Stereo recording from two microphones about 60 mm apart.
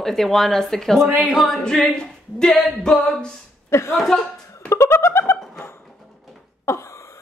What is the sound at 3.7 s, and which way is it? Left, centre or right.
Speech, left.